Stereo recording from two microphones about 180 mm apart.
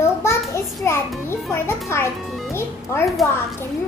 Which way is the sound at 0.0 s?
15° left (ahead or behind).